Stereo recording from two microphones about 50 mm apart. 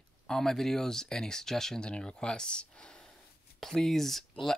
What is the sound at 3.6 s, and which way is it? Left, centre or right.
Speech, centre.